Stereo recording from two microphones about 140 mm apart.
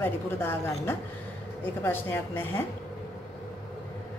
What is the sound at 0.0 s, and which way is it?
A woman's voice, 15° left (ahead or behind).